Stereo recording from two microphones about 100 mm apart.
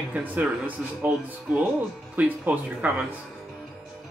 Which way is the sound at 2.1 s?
15° right (ahead or behind).